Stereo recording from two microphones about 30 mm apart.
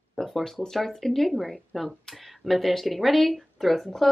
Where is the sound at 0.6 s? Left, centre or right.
Centre.